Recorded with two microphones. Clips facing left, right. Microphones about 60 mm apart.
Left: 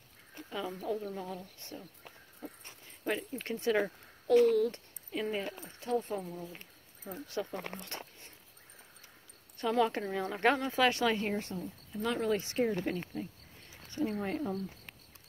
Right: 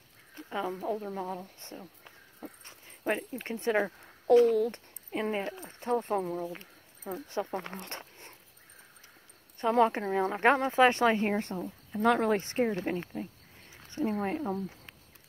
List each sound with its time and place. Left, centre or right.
0.5 s speech: right
2.4 s a sound: right
3.0 s speech: right
5.9 s speech: right
7.2 s speech: right
7.9 s dog: right
9.6 s speech: right
12.6 s speech: right